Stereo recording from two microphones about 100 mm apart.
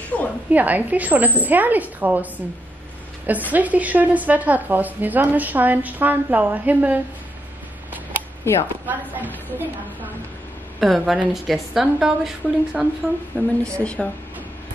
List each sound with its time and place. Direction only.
0.1 s a sound: 10° left (ahead or behind)
0.5 s a woman's voice: 15° right (ahead or behind)
3.3 s a woman's voice: 15° right (ahead or behind)
8.5 s speech: 25° left (ahead or behind)
8.8 s a woman's voice: 15° right (ahead or behind)
10.8 s a woman's voice: centre (ahead or behind)
13.4 s speech: 10° left (ahead or behind)